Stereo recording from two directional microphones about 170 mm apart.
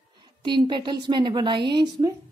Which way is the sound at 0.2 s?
25° right (ahead or behind).